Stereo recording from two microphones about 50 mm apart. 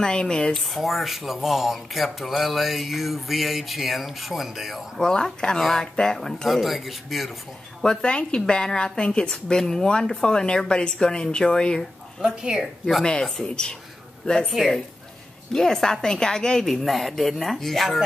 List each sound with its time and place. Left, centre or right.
0.0 s a woman's voice: centre
0.6 s speech: centre
5.0 s a woman's voice: centre
5.6 s speech: centre
7.8 s a woman's voice: centre
12.2 s a woman's voice: centre
13.0 s a woman's voice: centre
14.4 s a woman's voice: centre
15.5 s a woman's voice: centre